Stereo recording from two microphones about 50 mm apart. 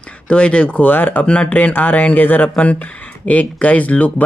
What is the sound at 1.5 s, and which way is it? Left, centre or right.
Speech, left.